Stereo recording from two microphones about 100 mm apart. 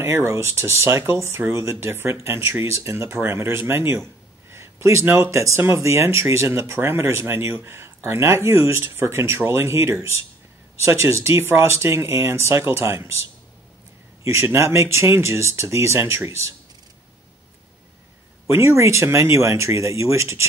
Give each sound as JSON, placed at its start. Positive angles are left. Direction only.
{"t": 0.0, "sound": "speech", "side_deg": -30}
{"t": 18.5, "sound": "speech", "side_deg": -25}